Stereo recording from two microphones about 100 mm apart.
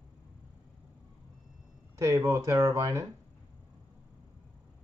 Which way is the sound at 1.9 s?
30° right (ahead or behind).